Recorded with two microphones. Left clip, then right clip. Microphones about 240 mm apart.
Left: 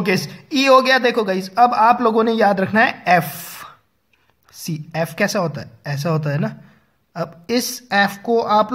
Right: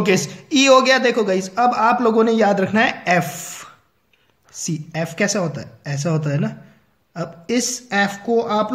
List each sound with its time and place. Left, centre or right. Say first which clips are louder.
0.0 s speech: right 2 dB; left